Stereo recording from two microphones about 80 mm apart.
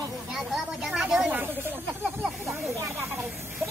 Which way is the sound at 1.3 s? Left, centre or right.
Right.